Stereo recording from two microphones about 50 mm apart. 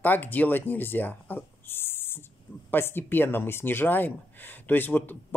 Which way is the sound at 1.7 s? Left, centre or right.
Left.